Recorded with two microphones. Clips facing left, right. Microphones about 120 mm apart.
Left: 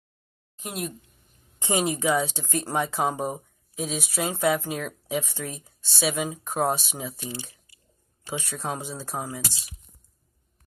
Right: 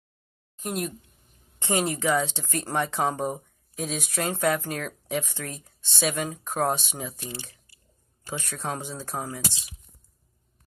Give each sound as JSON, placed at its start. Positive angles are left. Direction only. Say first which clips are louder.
{"t": 0.6, "sound": "speech", "louder": "right 3 dB", "side_deg": 0}
{"t": 1.6, "sound": "speech", "louder": "left 1 dB", "side_deg": 15}
{"t": 9.5, "sound": "speech", "louder": "left 1 dB", "side_deg": -15}